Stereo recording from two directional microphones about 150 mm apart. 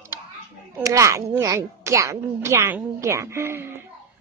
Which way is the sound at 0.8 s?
20° right (ahead or behind).